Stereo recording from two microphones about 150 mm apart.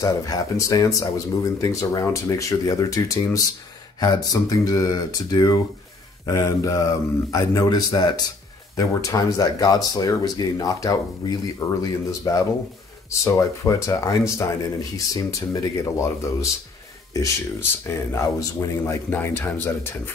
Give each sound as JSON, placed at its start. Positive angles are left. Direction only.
{"t": 0.0, "sound": "speech", "side_deg": 20}